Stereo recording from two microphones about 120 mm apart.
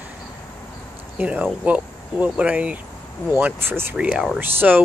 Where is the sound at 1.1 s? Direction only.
10° right (ahead or behind).